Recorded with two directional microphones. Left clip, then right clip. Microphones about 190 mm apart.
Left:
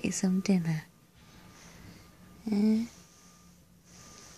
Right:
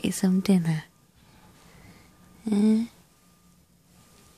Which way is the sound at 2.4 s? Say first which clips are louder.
Right 5 dB; 25° right (ahead or behind).